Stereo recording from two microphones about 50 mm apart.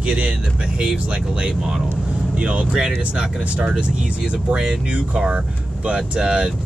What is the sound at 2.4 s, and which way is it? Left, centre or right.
Speech, right.